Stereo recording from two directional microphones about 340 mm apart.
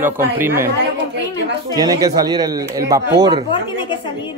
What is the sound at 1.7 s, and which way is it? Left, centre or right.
Speech, centre.